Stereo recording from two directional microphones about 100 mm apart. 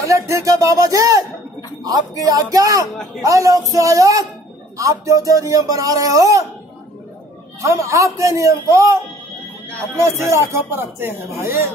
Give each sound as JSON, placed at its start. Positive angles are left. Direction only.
{"t": 0.0, "sound": "speech", "side_deg": -30}
{"t": 7.6, "sound": "speech", "side_deg": -30}